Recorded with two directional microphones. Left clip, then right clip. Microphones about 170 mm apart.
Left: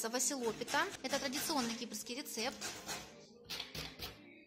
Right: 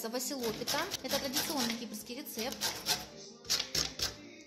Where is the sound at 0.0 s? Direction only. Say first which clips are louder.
Right 1 dB; centre (ahead or behind).